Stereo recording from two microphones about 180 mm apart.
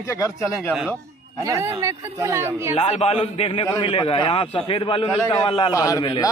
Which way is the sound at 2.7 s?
35° left (ahead or behind).